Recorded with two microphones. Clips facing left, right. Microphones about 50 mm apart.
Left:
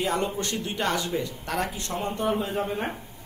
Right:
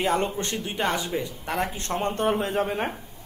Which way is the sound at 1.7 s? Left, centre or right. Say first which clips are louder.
Right 3 dB; right.